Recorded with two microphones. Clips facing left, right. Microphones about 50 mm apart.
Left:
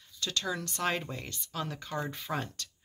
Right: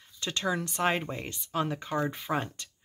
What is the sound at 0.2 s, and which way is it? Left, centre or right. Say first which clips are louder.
Speech: right 3 dB; right.